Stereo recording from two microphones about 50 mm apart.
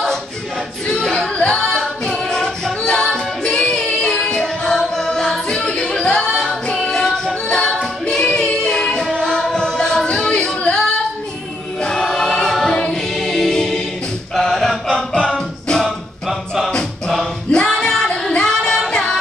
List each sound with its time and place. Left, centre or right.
1.1 s singing: centre
6.3 s music: centre
8.0 s child singing: centre
9.6 s music: centre
10.3 s yodeling: centre
12.0 s music: centre
14.3 s a capella: centre
15.8 s music: centre
17.5 s music: centre
18.3 s singing: centre